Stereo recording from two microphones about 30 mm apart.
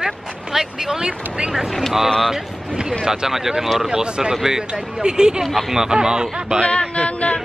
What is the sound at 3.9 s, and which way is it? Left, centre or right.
Speech, right.